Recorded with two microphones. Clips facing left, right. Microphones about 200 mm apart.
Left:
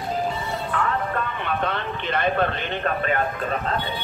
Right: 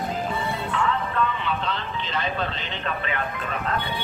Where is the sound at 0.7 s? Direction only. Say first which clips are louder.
Even; 50° left (ahead or behind).